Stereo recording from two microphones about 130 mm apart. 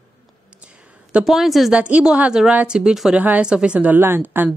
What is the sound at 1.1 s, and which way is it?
A woman's voice, centre (ahead or behind).